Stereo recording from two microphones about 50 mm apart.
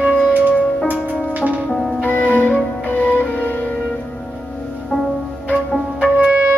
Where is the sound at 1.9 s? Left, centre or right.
Left.